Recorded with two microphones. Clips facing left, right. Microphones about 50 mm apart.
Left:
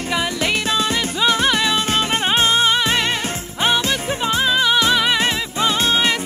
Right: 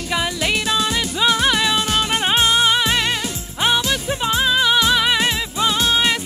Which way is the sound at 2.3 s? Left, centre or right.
Left.